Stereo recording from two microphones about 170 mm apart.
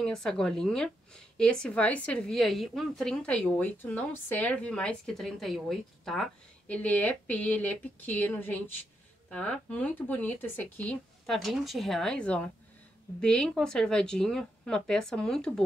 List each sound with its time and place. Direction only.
0.0 s speech: 5° left (ahead or behind)